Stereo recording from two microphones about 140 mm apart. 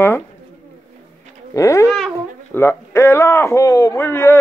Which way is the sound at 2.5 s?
20° left (ahead or behind).